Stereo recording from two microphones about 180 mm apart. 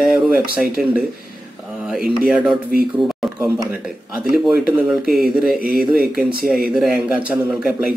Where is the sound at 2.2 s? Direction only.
5° right (ahead or behind).